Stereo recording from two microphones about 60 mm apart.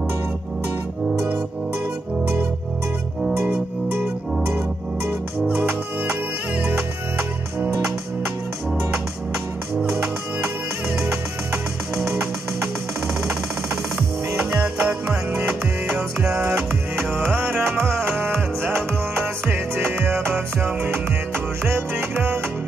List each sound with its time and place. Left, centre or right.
11.0 s music: right
17.1 s music: right